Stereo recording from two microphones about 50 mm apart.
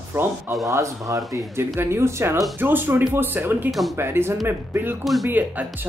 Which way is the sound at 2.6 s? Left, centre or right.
Right.